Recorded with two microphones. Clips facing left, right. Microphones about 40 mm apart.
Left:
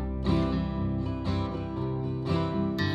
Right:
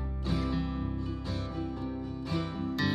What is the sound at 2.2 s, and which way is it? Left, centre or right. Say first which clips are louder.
Music: left 6 dB; left.